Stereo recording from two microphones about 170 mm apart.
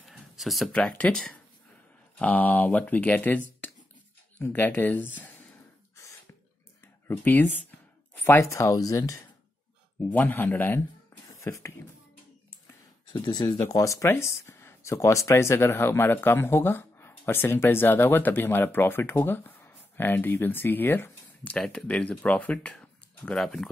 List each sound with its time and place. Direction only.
0.0 s speech: centre (ahead or behind)
7.1 s speech: 10° left (ahead or behind)
11.2 s a sound: 20° left (ahead or behind)
13.1 s speech: 30° left (ahead or behind)
13.5 s speech: 15° left (ahead or behind)